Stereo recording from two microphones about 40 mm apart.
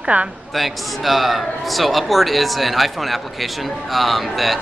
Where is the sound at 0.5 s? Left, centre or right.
Centre.